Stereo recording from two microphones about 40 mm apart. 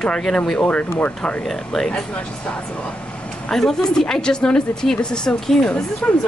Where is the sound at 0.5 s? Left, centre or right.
Left.